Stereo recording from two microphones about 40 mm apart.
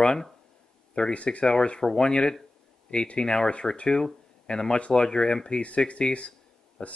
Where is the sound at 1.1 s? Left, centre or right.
Left.